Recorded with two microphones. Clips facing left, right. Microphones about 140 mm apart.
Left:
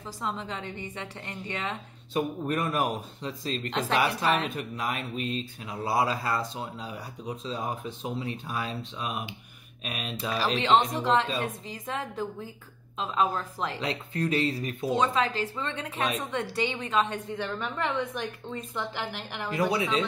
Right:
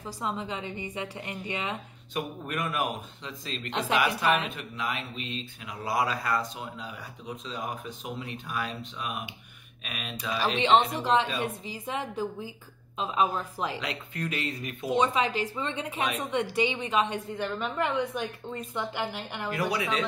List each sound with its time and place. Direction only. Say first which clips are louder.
0.0 s a woman's voice: right 1 dB; 5° right (ahead or behind)
2.1 s speech: left 5 dB; 35° left (ahead or behind)
5.9 s speech: left 1 dB; 30° left (ahead or behind)
11.0 s a woman's voice: even; centre (ahead or behind)
13.7 s speech: left 4 dB; 35° left (ahead or behind)
15.0 s a woman's voice: right 2 dB; 10° right (ahead or behind)
19.5 s speech: left 3 dB; 30° left (ahead or behind)